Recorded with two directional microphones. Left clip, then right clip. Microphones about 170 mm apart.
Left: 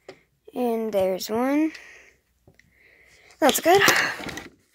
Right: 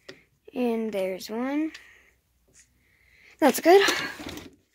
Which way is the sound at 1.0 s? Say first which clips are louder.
Left 6 dB; 15° left (ahead or behind).